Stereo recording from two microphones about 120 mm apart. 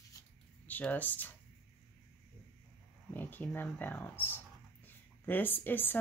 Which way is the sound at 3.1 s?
15° left (ahead or behind).